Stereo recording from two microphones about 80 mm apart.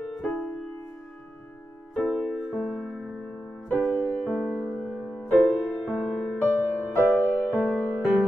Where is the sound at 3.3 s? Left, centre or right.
Left.